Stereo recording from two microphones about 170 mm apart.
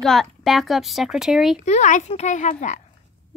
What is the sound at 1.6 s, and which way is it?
A woman's voice, 45° left (ahead or behind).